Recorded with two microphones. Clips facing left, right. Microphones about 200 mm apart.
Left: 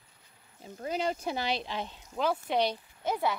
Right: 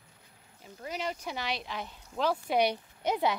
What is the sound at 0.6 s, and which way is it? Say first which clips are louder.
Speech: left 4 dB; 30° left (ahead or behind).